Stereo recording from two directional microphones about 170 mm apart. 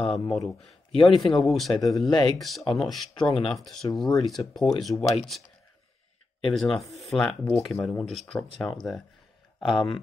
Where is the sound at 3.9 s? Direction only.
Centre (ahead or behind).